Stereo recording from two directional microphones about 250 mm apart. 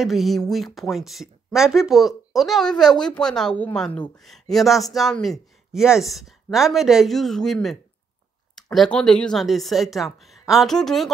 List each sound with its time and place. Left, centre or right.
0.0 s speech: centre
8.7 s speech: centre